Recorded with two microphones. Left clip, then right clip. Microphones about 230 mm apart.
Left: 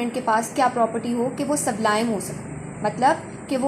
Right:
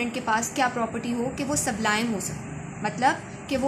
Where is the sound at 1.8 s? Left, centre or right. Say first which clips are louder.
Left 4 dB; right.